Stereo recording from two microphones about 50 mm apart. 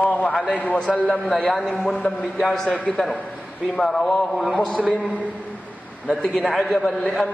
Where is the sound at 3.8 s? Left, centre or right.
Centre.